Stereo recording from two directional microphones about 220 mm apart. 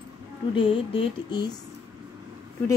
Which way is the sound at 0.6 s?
25° left (ahead or behind).